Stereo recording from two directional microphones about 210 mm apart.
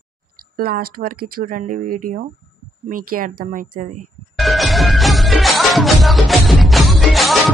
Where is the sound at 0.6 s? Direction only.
45° right (ahead or behind).